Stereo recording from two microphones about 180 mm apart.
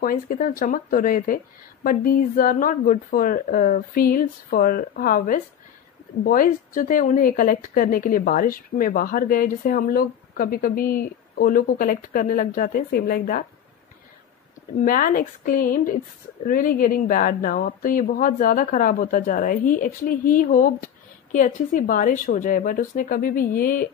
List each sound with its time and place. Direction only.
0.0 s a woman's voice: 50° left (ahead or behind)
14.9 s a woman's voice: 50° left (ahead or behind)